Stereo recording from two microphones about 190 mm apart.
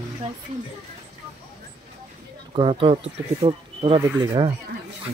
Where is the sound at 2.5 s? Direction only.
25° right (ahead or behind).